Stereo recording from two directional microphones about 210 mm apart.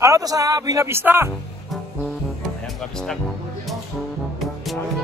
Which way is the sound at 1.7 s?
Centre (ahead or behind).